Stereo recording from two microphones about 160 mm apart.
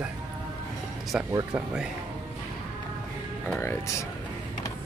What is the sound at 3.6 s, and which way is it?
Speech, 15° left (ahead or behind).